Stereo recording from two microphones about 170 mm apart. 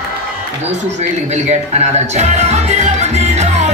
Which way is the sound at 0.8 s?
40° right (ahead or behind).